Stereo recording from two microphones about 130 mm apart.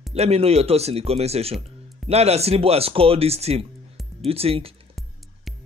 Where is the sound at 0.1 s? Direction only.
55° right (ahead or behind).